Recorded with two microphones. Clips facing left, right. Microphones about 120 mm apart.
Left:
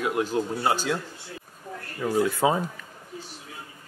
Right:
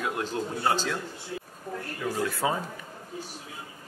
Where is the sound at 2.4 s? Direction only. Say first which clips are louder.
Left 5 dB; 20° left (ahead or behind).